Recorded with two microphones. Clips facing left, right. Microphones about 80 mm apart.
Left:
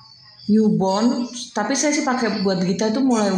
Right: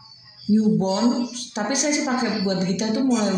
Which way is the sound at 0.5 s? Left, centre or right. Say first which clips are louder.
Left 3 dB; left.